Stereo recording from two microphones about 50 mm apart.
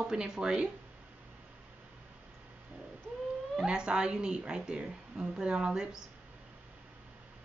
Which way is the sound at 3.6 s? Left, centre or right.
Centre.